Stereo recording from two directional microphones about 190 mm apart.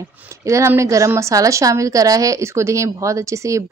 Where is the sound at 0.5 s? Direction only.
15° right (ahead or behind).